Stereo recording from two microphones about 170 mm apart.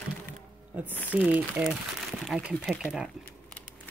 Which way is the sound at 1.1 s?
5° right (ahead or behind).